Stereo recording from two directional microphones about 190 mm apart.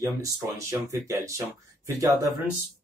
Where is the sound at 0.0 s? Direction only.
15° right (ahead or behind).